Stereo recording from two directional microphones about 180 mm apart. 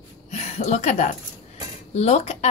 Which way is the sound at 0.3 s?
40° left (ahead or behind).